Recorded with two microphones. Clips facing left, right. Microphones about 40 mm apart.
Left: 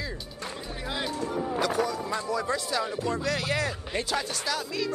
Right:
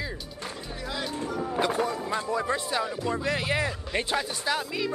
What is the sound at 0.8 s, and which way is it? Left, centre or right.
Speech, centre.